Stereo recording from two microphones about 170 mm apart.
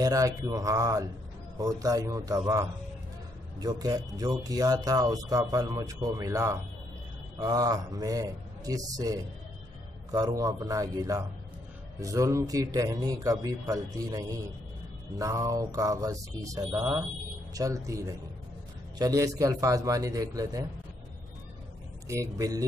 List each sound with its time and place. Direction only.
0.0 s speech: 20° right (ahead or behind)
22.0 s speech: 20° right (ahead or behind)